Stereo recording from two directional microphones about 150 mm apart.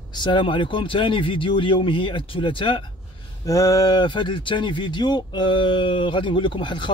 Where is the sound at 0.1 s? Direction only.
30° left (ahead or behind).